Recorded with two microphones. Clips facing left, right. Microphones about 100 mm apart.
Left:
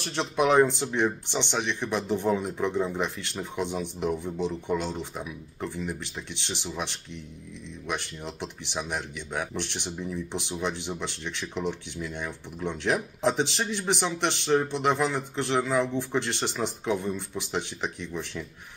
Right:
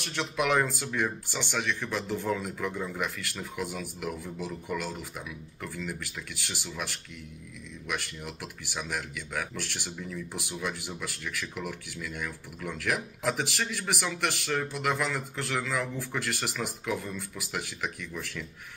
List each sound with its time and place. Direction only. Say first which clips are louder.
0.0 s speech: left 5 dB; 30° left (ahead or behind)